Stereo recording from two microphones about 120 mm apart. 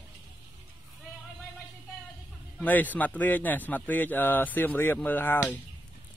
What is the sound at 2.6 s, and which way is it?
Speech, 15° left (ahead or behind).